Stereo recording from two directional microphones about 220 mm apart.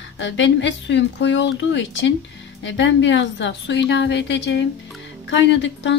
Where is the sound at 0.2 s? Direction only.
55° left (ahead or behind).